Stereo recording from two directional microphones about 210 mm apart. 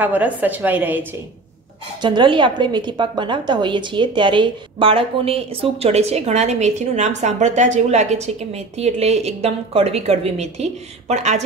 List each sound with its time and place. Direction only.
0.0 s a woman's voice: 10° right (ahead or behind)
2.0 s a woman's voice: 20° right (ahead or behind)